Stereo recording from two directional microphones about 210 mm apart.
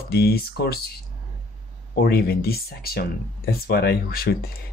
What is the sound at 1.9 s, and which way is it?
Speech, 45° left (ahead or behind).